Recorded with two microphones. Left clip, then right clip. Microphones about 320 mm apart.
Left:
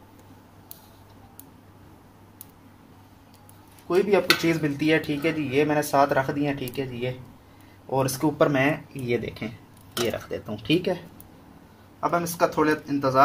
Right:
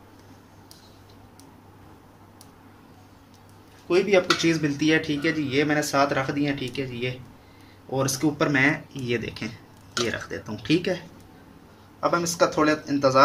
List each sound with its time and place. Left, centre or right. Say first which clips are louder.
4.4 s speech: right 1 dB; centre
12.0 s speech: right 1 dB; centre